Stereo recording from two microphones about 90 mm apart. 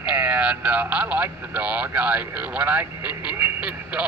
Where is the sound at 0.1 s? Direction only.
15° right (ahead or behind).